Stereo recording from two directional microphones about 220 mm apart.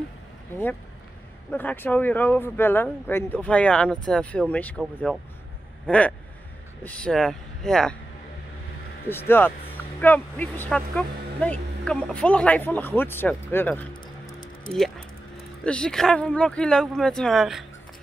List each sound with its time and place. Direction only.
1.5 s speech: 5° left (ahead or behind)
9.3 s speech: 10° left (ahead or behind)
14.0 s music: 20° left (ahead or behind)
15.6 s speech: 5° left (ahead or behind)